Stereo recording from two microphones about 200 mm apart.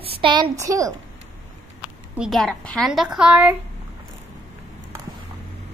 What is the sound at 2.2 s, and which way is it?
A woman's voice, centre (ahead or behind).